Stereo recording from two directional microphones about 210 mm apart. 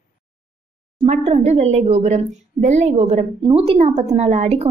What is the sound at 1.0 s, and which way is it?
A woman's voice, 30° right (ahead or behind).